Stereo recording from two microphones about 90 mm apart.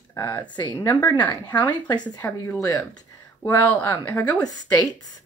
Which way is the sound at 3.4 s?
20° left (ahead or behind).